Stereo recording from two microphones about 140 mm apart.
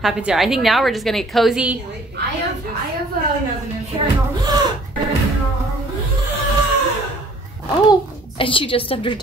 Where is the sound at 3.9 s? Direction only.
35° right (ahead or behind).